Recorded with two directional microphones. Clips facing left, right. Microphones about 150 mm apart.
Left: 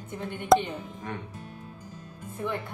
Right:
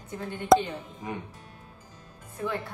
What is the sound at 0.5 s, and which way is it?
Speech, centre (ahead or behind).